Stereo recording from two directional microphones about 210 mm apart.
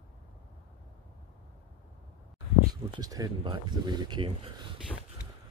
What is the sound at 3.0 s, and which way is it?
Speech, 15° right (ahead or behind).